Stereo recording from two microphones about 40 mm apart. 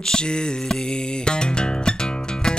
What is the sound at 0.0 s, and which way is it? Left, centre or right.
Mantra, left.